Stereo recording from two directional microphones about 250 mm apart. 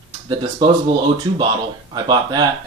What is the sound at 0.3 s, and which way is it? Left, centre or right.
Speech, centre.